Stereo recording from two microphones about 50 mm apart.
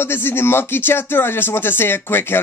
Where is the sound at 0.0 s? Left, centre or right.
Left.